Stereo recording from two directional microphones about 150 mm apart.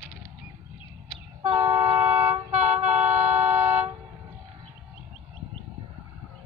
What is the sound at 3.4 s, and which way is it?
Vehicle, 10° right (ahead or behind).